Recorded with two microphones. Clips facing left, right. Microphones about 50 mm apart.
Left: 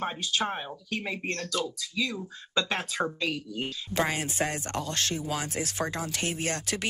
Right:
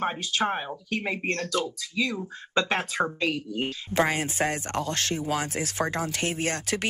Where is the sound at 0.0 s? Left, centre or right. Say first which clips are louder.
Right 3 dB; right.